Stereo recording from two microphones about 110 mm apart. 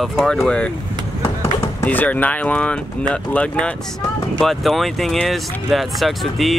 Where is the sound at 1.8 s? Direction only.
15° left (ahead or behind).